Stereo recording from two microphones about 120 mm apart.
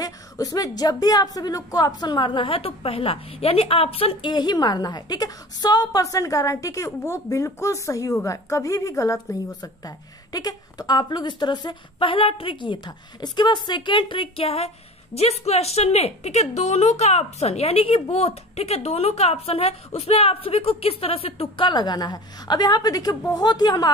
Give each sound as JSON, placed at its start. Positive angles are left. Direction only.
{"t": 0.0, "sound": "a woman's voice", "side_deg": 30}